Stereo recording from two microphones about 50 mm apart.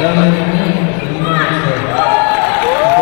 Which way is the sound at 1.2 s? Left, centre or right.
Centre.